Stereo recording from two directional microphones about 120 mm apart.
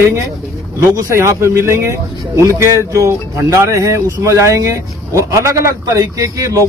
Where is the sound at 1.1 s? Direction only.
25° right (ahead or behind).